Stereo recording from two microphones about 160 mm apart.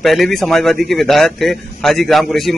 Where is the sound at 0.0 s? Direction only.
Centre (ahead or behind).